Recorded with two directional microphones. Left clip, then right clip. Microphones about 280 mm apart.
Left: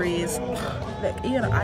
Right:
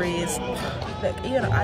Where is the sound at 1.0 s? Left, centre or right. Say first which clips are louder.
Right 1 dB; centre.